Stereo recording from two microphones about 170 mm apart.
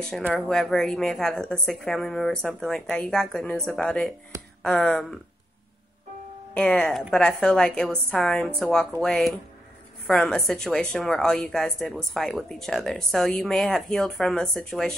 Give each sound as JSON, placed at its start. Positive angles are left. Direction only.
{"t": 0.3, "sound": "a woman's voice", "side_deg": 5}
{"t": 4.3, "sound": "a sound", "side_deg": -20}
{"t": 4.6, "sound": "a woman's voice", "side_deg": 5}
{"t": 6.5, "sound": "a woman's voice", "side_deg": 5}